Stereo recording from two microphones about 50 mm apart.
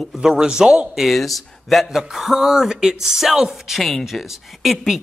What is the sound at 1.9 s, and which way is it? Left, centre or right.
Speech, centre.